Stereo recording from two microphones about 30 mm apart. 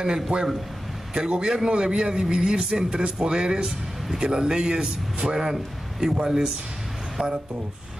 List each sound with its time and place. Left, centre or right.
0.0 s a man's voice: right
5.5 s a man's voice: centre